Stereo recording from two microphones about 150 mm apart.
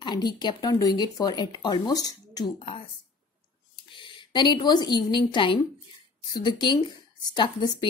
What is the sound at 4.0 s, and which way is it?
A woman's voice, 35° left (ahead or behind).